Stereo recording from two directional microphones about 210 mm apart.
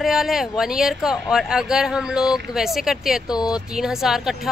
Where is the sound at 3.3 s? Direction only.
20° left (ahead or behind).